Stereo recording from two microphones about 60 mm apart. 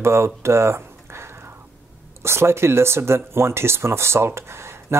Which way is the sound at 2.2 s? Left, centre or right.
Right.